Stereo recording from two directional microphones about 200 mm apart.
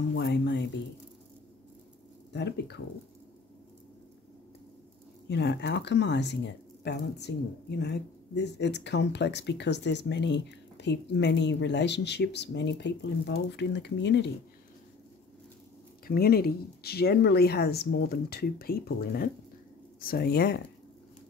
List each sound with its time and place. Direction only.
0.1 s a sound: 60° left (ahead or behind)
2.3 s speech: 55° left (ahead or behind)
5.3 s speech: 60° left (ahead or behind)
16.1 s speech: 50° left (ahead or behind)